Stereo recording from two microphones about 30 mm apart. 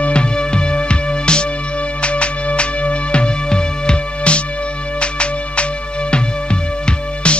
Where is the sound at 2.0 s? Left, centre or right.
Left.